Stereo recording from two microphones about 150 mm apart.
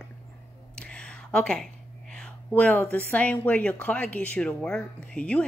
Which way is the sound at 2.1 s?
5° left (ahead or behind).